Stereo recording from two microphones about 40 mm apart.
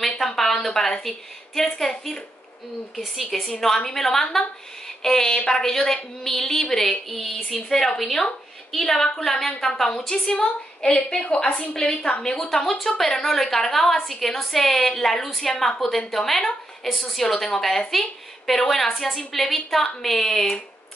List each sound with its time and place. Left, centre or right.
0.4 s a sound: centre
1.0 s a woman's voice: centre
12.8 s a woman's voice: centre